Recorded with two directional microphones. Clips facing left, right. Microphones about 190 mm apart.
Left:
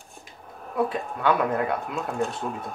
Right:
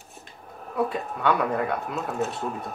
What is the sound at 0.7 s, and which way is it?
Speech, centre (ahead or behind).